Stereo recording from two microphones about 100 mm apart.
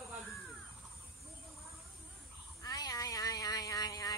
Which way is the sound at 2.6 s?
40° left (ahead or behind).